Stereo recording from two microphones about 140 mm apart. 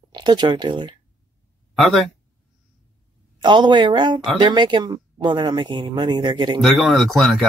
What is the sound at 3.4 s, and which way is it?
Speech, 30° right (ahead or behind).